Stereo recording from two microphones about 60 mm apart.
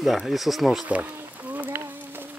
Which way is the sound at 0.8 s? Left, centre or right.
Right.